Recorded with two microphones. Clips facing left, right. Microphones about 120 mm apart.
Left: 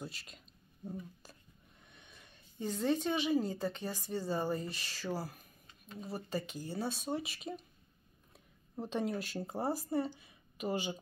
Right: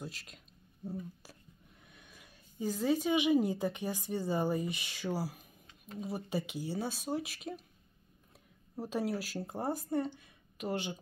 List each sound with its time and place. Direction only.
0.0 s speech: centre (ahead or behind)
1.9 s speech: 5° right (ahead or behind)
8.7 s speech: 5° right (ahead or behind)